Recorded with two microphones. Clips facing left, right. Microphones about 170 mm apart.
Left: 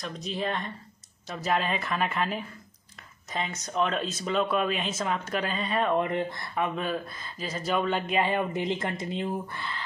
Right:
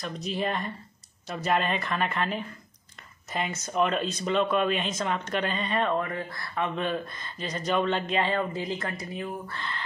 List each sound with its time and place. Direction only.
0.0 s speech: centre (ahead or behind)
5.9 s speech: 20° left (ahead or behind)
6.5 s speech: 5° left (ahead or behind); by 9.6 s 25° left (ahead or behind)
9.6 s speech: 5° left (ahead or behind)